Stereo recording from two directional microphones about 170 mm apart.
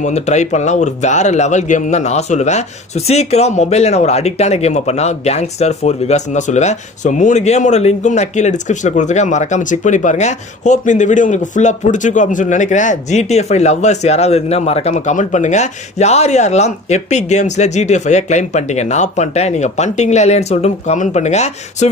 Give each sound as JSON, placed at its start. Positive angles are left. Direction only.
{"t": 0.0, "sound": "speech", "side_deg": 45}